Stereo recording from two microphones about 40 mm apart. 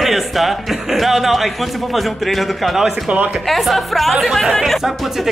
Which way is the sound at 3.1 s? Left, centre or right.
Right.